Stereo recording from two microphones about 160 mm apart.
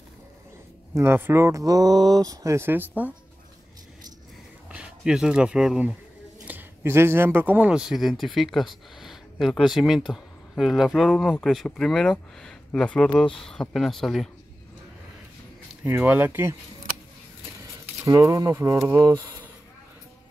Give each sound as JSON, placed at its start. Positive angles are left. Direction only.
{"t": 0.9, "sound": "speech", "side_deg": -15}
{"t": 4.6, "sound": "speech", "side_deg": -5}
{"t": 15.8, "sound": "speech", "side_deg": -10}
{"t": 17.6, "sound": "speech", "side_deg": -20}